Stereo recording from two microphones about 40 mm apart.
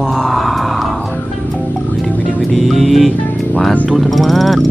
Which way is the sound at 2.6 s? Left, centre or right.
Centre.